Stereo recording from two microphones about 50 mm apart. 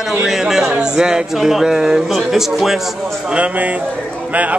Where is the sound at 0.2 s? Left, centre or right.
Centre.